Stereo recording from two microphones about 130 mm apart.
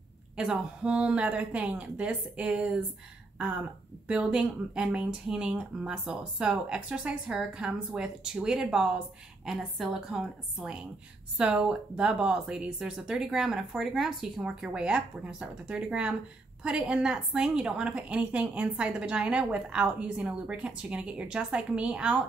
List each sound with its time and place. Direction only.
0.4 s a woman's voice: 10° right (ahead or behind)
3.3 s a sound: 10° right (ahead or behind)
4.1 s a woman's voice: 5° right (ahead or behind)